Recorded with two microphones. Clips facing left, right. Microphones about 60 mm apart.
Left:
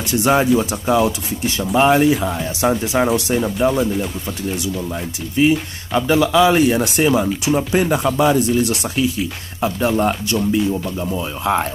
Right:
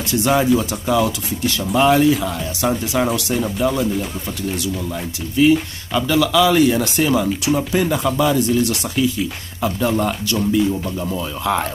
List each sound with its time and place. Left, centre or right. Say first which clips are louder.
0.1 s speech: left 1 dB; left
5.4 s speech: right 2 dB; left